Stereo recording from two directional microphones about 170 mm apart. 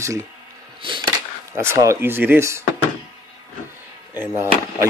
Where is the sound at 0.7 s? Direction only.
30° right (ahead or behind).